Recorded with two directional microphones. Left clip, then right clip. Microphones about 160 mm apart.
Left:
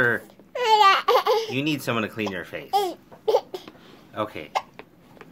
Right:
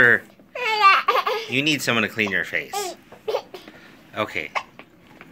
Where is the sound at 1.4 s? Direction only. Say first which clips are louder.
Right 5 dB; 10° left (ahead or behind).